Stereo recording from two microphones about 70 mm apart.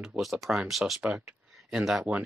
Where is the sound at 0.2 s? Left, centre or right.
Centre.